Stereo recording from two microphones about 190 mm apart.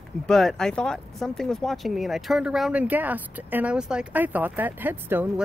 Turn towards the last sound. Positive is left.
turn(degrees=-10)  # may be behind; listen again after turning